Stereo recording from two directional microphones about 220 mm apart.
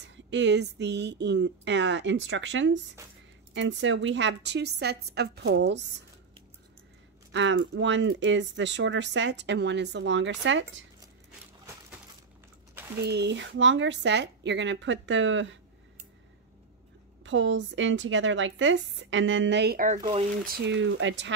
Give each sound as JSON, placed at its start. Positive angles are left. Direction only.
{"t": 0.0, "sound": "speech", "side_deg": -55}
{"t": 7.3, "sound": "speech", "side_deg": -55}
{"t": 13.0, "sound": "speech", "side_deg": -50}
{"t": 17.2, "sound": "speech", "side_deg": -55}
{"t": 20.0, "sound": "speech", "side_deg": -25}
{"t": 20.4, "sound": "speech", "side_deg": -50}